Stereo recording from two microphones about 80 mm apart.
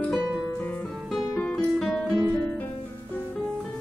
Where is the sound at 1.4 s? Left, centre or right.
Centre.